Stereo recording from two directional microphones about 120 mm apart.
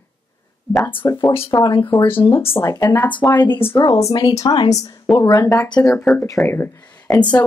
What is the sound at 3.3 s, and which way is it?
Speech, 40° left (ahead or behind).